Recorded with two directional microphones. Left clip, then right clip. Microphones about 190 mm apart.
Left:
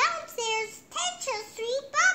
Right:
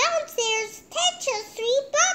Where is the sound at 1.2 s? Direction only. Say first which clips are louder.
Right 6 dB; 60° left (ahead or behind).